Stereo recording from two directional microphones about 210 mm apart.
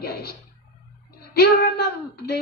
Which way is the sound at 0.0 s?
45° left (ahead or behind).